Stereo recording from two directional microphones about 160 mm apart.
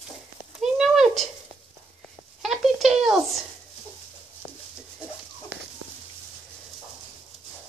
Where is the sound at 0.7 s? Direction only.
Centre (ahead or behind).